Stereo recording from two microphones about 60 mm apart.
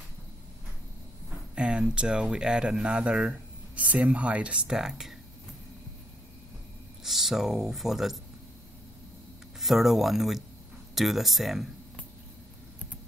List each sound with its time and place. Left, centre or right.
1.5 s speech: centre
7.0 s speech: centre
9.6 s speech: centre